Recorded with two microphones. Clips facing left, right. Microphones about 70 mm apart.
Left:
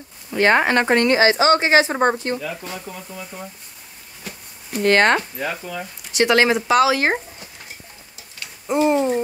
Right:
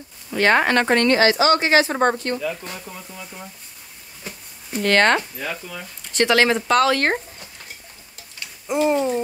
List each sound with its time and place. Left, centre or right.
0.3 s speech: centre
1.3 s speech: left
2.0 s speech: centre
4.7 s speech: centre
8.6 s speech: centre